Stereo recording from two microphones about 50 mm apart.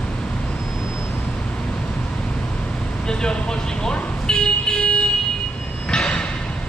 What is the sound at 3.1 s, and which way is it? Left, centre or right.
Vehicle, centre.